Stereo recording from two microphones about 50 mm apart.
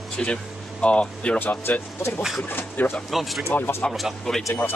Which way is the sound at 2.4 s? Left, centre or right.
Left.